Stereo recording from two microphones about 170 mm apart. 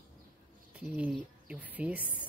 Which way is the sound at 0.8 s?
10° right (ahead or behind).